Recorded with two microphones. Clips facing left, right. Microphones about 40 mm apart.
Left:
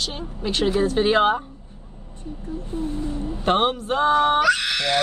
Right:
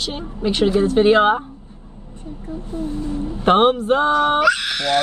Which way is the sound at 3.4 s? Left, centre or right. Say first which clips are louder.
Right 6 dB; right.